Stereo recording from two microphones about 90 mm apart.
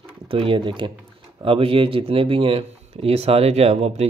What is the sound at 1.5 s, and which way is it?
Speech, 90° right.